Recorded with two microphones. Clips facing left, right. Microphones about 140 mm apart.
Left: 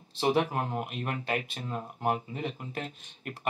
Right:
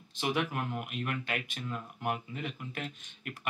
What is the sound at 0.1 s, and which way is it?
Speech, 35° left (ahead or behind).